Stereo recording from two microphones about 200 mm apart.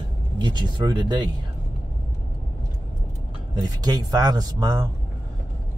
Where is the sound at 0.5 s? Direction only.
20° right (ahead or behind).